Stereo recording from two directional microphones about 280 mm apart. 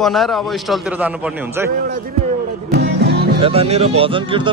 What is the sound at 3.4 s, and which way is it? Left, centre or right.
Speech, right.